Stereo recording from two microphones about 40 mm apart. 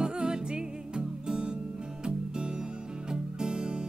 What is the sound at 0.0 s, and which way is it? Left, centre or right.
Music, right.